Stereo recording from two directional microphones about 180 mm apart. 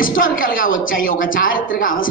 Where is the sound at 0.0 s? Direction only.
50° left (ahead or behind).